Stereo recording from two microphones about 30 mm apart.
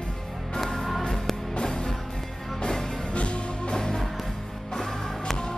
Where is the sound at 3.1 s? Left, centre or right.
Left.